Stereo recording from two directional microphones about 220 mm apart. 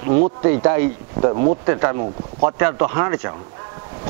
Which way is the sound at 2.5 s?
20° right (ahead or behind).